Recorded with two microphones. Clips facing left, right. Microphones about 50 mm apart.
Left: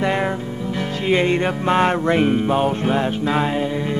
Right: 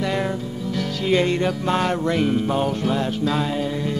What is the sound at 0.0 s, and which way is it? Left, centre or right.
Music, left.